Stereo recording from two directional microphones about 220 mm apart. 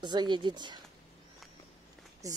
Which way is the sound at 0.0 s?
20° right (ahead or behind).